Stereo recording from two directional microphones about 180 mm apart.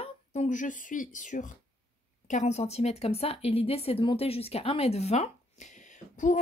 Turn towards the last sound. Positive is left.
turn(degrees=45)  # may be behind; listen again after turning